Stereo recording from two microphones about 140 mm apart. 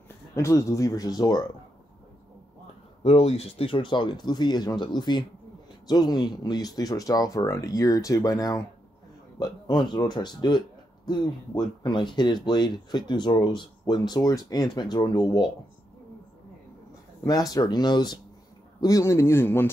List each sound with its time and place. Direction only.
0.4 s speech: 20° left (ahead or behind)
3.0 s speech: 45° left (ahead or behind)
17.2 s speech: 25° left (ahead or behind)